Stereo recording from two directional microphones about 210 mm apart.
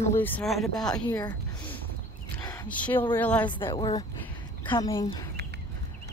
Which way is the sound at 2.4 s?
20° left (ahead or behind).